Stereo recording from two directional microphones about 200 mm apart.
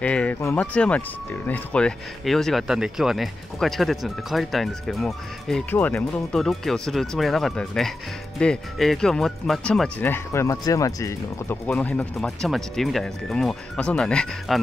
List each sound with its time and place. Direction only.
0.0 s speech: 5° left (ahead or behind)